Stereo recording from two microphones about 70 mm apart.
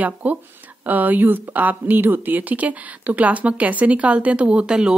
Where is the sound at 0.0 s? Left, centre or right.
Right.